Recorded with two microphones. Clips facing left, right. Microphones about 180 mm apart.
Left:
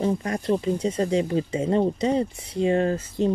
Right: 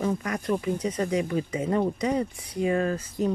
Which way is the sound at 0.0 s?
30° left (ahead or behind).